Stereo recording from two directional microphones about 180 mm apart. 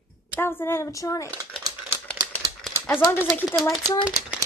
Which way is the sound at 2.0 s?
5° left (ahead or behind).